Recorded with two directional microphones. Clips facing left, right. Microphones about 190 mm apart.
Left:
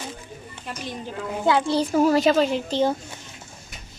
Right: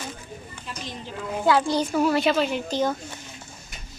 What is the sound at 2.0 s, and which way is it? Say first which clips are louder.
Speech: left 4 dB; 40° left (ahead or behind).